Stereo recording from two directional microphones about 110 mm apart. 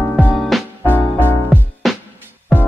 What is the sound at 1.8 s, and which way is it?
Music, centre (ahead or behind).